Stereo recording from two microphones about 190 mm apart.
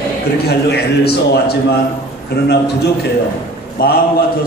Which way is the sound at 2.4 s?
60° left (ahead or behind).